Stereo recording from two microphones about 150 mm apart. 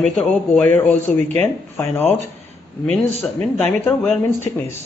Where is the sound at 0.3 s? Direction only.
10° left (ahead or behind).